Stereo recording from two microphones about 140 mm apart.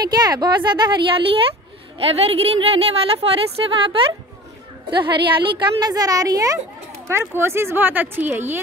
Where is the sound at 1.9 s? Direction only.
45° right (ahead or behind).